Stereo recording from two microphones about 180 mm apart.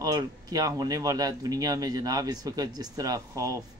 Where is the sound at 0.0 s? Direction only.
20° right (ahead or behind).